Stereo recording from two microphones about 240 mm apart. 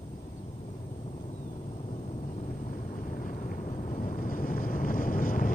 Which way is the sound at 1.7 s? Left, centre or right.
Left.